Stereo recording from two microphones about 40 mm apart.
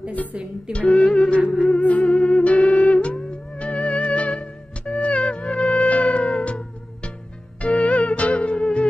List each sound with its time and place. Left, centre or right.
0.7 s music: left
7.6 s music: left